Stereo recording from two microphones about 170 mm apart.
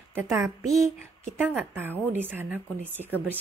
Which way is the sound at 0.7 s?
15° right (ahead or behind).